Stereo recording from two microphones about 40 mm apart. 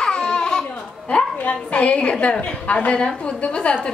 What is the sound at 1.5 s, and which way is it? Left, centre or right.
A woman's voice, left.